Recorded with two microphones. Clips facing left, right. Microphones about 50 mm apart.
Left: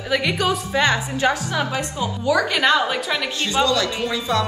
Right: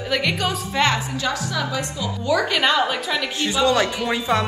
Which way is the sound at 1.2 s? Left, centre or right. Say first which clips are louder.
Left 4 dB; left.